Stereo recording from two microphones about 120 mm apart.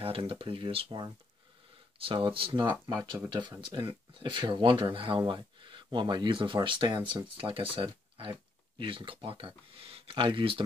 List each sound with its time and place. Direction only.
0.0 s speech: 45° right (ahead or behind)